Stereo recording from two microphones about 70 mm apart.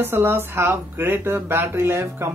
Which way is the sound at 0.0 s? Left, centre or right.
Right.